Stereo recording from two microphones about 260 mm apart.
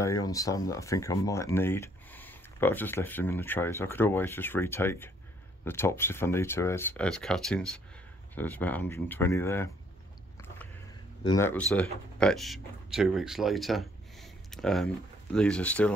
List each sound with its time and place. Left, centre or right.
0.0 s speech: centre
11.2 s speech: centre